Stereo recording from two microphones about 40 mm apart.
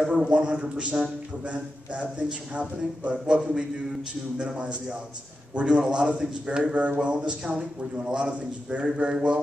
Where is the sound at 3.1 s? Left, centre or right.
Centre.